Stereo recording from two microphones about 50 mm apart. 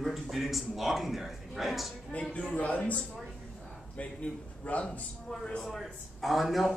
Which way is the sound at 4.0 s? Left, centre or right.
Left.